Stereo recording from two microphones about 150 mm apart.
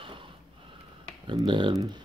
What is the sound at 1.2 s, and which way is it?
Speech, 30° right (ahead or behind).